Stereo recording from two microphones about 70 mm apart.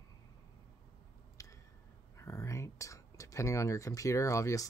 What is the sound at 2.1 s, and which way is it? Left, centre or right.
Speech, left.